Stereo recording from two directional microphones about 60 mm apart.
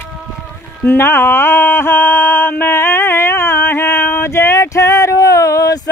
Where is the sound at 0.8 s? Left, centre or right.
Left.